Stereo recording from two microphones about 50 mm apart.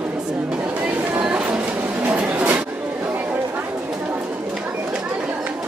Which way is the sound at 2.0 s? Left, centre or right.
Right.